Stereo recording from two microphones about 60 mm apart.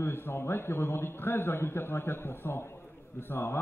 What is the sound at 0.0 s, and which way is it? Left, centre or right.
A man's voice, left.